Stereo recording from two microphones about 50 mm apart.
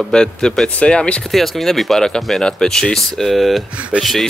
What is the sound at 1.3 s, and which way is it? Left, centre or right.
Speech, centre.